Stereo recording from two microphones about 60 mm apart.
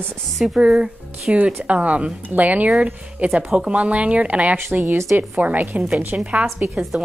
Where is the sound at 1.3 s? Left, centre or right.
Right.